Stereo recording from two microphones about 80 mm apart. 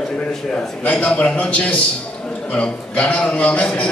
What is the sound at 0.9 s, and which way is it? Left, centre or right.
A man's voice, centre.